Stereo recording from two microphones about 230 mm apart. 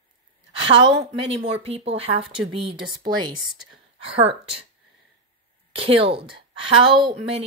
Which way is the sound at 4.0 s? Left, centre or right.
Right.